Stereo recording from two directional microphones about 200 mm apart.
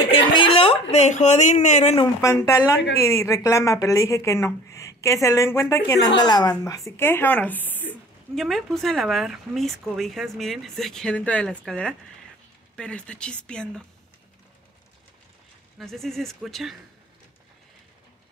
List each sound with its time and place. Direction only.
0.1 s a woman's voice: 25° left (ahead or behind)
2.2 s speech: 15° left (ahead or behind)
15.8 s speech: centre (ahead or behind)